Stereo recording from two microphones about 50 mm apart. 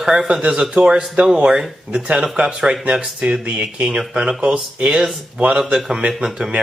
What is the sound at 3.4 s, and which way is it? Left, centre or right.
Speech, right.